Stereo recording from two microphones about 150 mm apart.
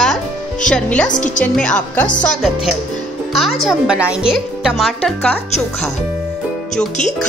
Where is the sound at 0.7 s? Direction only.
5° left (ahead or behind).